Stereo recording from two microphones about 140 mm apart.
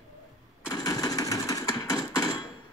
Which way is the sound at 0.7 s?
30° left (ahead or behind).